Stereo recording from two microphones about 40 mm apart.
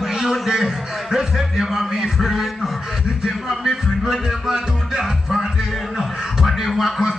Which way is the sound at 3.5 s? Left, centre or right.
Centre.